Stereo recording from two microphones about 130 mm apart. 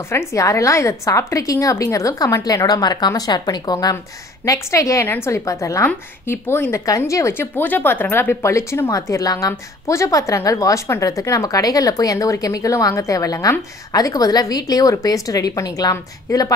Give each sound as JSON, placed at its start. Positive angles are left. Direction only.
{"t": 0.1, "sound": "a woman's voice", "side_deg": 20}